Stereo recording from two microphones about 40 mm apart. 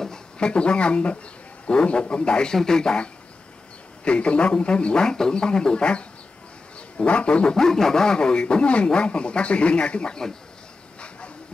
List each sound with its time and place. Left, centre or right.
0.4 s speech: left
4.0 s speech: left
5.0 s speech: centre
7.1 s dog: left
7.5 s speech: centre